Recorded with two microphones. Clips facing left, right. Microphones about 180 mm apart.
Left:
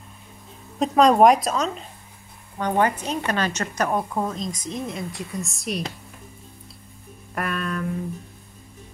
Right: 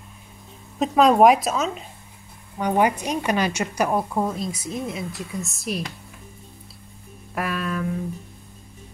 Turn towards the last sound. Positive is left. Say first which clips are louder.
# right 1 dB
turn(degrees=-5)  # may be behind; listen again after turning